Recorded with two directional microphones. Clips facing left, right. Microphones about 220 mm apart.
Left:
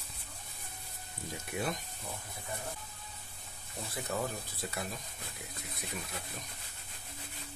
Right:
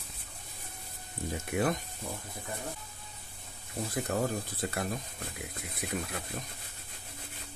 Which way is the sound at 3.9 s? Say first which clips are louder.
Right 5 dB; 50° right (ahead or behind).